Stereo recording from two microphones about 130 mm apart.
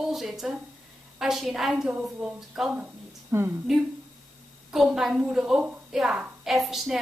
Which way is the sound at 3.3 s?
20° right (ahead or behind).